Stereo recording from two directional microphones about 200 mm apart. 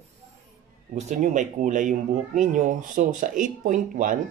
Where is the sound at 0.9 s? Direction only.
35° right (ahead or behind).